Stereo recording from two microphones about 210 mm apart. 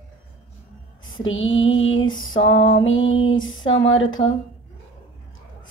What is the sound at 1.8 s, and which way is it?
Female singing, 70° left (ahead or behind).